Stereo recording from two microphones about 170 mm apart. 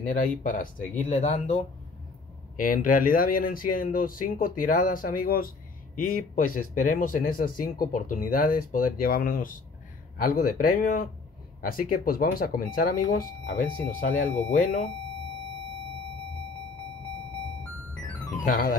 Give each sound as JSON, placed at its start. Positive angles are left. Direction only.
{"t": 0.0, "sound": "speech", "side_deg": 50}
{"t": 2.6, "sound": "speech", "side_deg": 50}
{"t": 18.4, "sound": "speech", "side_deg": 55}